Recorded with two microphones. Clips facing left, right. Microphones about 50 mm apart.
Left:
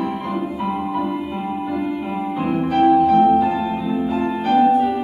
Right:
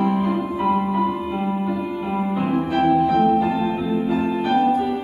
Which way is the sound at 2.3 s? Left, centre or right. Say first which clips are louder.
Left 3 dB; centre.